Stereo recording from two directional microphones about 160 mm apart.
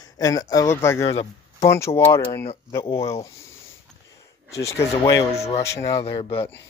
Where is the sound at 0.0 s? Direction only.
20° left (ahead or behind).